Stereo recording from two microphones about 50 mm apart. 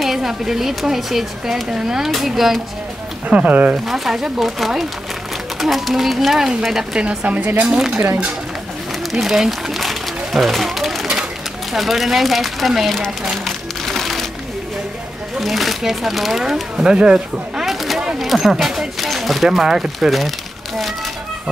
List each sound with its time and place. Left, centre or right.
0.0 s speech: centre
3.3 s speech: right
3.8 s speech: centre
7.1 s speech: right
7.6 s speech: centre
9.1 s a sound: centre
11.7 s speech: centre
13.4 s music: centre
15.4 s speech: centre
16.7 s speech: centre
17.6 s single-lens reflex camera: centre
18.2 s speech: centre